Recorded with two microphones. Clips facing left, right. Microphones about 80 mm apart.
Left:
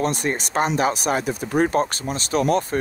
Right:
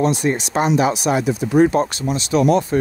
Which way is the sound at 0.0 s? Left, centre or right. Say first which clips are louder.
Right 5 dB; left.